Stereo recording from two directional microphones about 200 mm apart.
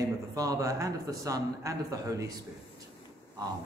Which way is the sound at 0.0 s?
15° right (ahead or behind).